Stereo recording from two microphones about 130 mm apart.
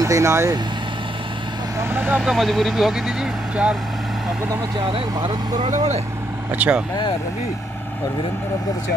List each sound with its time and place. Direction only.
0.0 s speech: 20° right (ahead or behind)
1.8 s speech: 15° right (ahead or behind)
2.3 s speech: centre (ahead or behind)
4.7 s speech: 40° right (ahead or behind)
5.7 s speech: 60° right (ahead or behind)
6.5 s speech: 10° right (ahead or behind)